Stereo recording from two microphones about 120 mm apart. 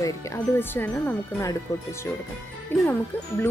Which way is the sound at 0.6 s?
15° left (ahead or behind).